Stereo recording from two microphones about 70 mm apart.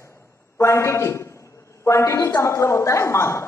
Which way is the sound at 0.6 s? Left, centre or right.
Left.